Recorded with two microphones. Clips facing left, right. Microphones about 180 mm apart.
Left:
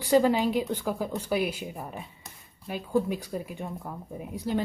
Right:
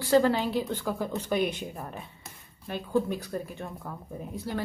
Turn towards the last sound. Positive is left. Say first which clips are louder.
# left 4 dB
turn(degrees=15)  # may be behind; listen again after turning